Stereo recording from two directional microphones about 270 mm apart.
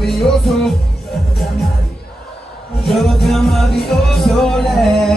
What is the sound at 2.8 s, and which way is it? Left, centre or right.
Music, centre.